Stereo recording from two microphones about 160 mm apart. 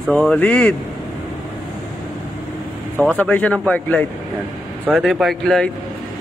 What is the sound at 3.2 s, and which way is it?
Speech, 10° left (ahead or behind).